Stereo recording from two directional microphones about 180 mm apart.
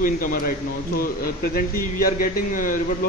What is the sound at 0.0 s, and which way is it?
A man's voice, 50° left (ahead or behind).